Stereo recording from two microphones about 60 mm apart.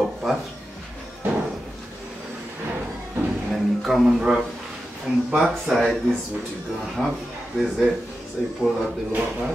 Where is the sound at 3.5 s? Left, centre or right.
Centre.